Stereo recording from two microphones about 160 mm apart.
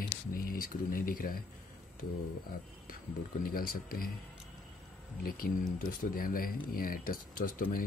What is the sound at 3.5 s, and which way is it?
Speech, 65° left (ahead or behind).